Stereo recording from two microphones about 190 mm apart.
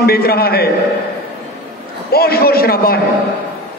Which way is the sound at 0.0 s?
55° left (ahead or behind).